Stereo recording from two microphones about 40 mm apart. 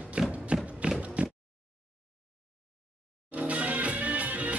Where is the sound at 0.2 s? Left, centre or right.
Right.